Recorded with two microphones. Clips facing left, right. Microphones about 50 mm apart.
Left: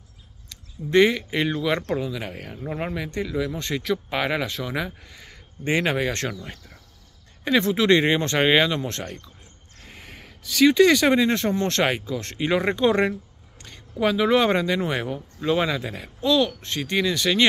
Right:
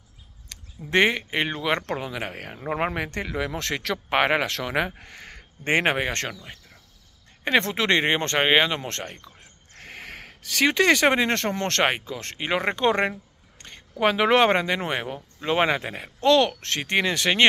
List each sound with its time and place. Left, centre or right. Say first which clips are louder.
0.5 s a sound: left 3 dB; right
1.0 s speech: left 2 dB; right
2.0 s speech: left 2 dB; right
3.5 s speech: left 2 dB; right
5.9 s speech: left 2 dB; right
7.4 s speech: left 2 dB; right
8.4 s speech: left 1 dB; right
9.4 s a sound: right 3 dB; right
11.8 s speech: left 1 dB; right
16.2 s speech: right 2 dB; right